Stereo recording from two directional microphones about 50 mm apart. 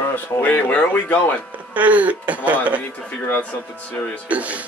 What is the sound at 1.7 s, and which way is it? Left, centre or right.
Speech, right.